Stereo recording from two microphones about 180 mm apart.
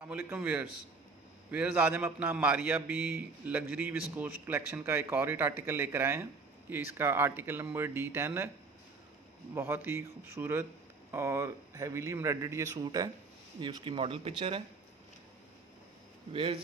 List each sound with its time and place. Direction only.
0.1 s a man's voice: 10° right (ahead or behind)
9.5 s a man's voice: 10° right (ahead or behind); by 14.6 s 30° right (ahead or behind)